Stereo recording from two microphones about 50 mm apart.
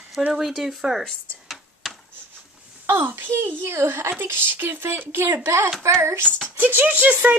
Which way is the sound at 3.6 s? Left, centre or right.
Right.